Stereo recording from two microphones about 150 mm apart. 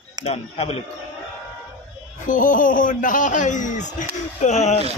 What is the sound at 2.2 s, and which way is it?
A man's voice, 60° left (ahead or behind).